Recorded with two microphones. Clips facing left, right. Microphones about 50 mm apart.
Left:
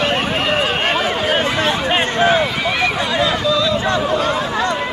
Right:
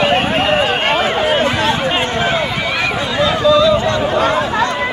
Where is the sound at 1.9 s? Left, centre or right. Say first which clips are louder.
Left 1 dB; left.